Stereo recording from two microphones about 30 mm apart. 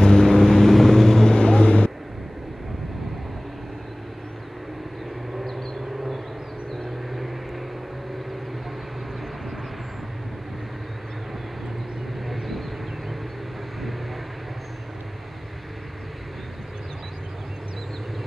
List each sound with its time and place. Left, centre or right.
0.0 s vehicle: centre
1.3 s vehicle: left
7.1 s vehicle: centre
12.3 s vehicle: centre